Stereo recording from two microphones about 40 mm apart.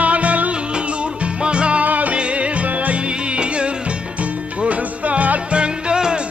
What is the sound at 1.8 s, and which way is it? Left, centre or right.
Music, right.